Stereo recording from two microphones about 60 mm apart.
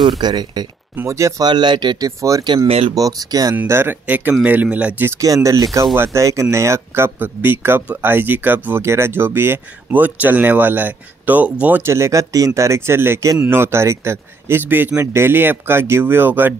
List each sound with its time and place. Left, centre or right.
1.0 s speech: right
2.0 s speech: right
3.6 s speech: right
4.1 s speech: right
5.2 s speech: right
5.9 s speech: right
7.2 s speech: right
8.8 s speech: right
11.8 s speech: right